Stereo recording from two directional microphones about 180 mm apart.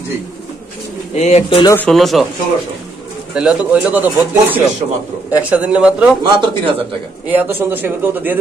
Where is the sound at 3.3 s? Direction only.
5° right (ahead or behind).